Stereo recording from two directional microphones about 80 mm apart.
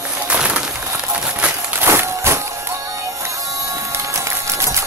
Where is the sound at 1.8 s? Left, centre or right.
Right.